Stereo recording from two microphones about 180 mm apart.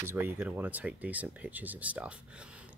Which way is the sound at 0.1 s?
10° right (ahead or behind).